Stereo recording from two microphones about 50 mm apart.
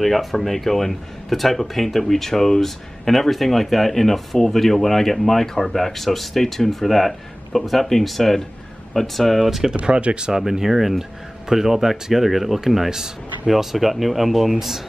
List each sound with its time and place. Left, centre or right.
0.0 s speech: centre
9.8 s speech: right
10.3 s speech: centre